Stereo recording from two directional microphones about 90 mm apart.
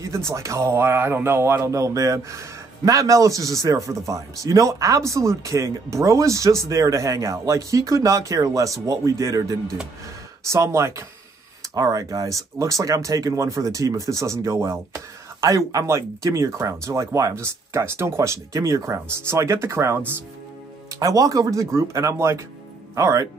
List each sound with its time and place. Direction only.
0.0 s a man's voice: 35° right (ahead or behind)
21.0 s a man's voice: 40° right (ahead or behind)